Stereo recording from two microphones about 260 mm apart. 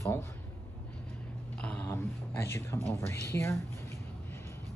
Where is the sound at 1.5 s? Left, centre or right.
Centre.